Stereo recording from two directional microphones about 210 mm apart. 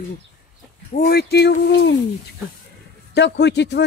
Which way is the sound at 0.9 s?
45° left (ahead or behind).